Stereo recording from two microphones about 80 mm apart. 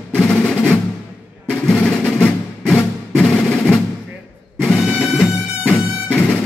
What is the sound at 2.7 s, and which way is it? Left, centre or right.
Music, centre.